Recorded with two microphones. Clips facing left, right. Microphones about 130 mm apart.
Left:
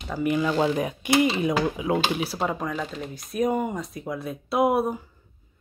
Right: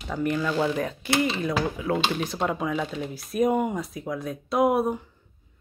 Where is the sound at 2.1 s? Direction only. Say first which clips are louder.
Even; 5° left (ahead or behind).